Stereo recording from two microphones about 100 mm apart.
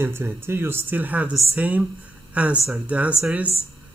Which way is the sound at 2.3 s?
15° right (ahead or behind).